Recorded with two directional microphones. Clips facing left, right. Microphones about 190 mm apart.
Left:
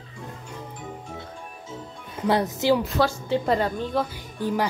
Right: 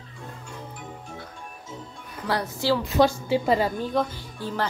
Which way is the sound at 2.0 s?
25° left (ahead or behind).